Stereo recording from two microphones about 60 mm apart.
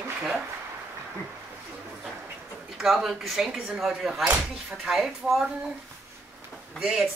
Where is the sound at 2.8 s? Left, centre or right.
Centre.